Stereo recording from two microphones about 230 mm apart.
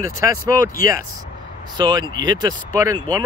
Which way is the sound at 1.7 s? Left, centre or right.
Centre.